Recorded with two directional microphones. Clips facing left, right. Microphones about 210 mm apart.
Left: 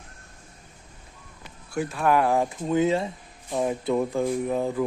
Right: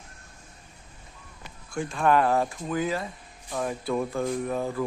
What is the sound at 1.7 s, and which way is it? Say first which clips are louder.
Speech: left 1 dB; 5° left (ahead or behind).